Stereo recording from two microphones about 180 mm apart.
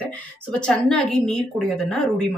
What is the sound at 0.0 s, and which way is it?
A woman's voice, 5° left (ahead or behind).